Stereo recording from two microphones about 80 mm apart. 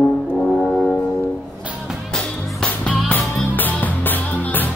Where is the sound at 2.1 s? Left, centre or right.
Centre.